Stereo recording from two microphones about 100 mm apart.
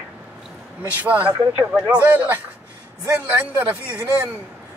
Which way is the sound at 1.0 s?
15° right (ahead or behind).